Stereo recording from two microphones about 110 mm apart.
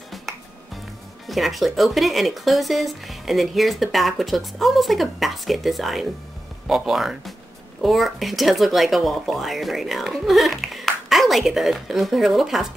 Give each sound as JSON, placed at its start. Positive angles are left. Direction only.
{"t": 1.2, "sound": "speech", "side_deg": 0}